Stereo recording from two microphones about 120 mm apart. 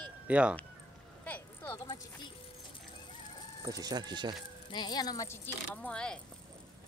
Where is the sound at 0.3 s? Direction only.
10° right (ahead or behind).